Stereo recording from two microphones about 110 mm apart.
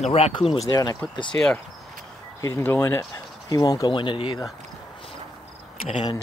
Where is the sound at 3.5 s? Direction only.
30° left (ahead or behind); by 4.4 s 50° left (ahead or behind).